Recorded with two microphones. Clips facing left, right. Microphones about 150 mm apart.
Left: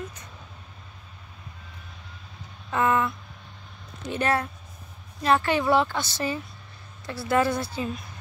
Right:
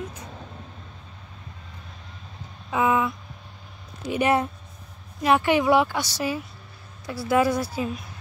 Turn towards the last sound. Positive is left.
turn(degrees=-10)  # may be behind; listen again after turning